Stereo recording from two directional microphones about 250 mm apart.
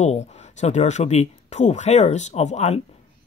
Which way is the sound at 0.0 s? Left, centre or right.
Left.